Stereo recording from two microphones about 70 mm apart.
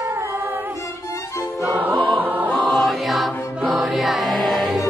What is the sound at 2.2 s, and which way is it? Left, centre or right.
Music, right.